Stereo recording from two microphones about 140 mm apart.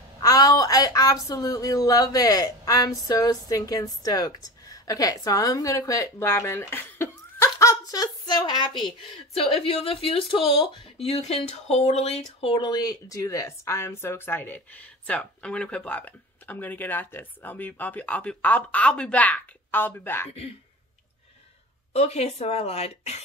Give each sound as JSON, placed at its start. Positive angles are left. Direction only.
{"t": 0.2, "sound": "a woman's voice", "side_deg": 25}
{"t": 8.8, "sound": "a woman's voice", "side_deg": 45}
{"t": 21.9, "sound": "speech", "side_deg": 50}